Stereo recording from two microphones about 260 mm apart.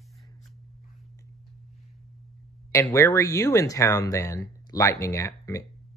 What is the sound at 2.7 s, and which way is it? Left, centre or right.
Speech, centre.